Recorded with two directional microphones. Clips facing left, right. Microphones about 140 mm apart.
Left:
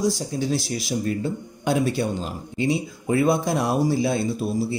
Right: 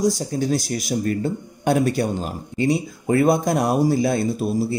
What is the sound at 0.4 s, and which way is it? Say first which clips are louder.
Speech: right 3 dB; 45° right (ahead or behind).